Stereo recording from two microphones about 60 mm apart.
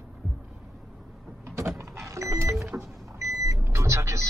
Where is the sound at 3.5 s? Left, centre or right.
Right.